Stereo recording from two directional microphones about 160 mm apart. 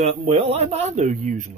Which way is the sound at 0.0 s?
40° right (ahead or behind).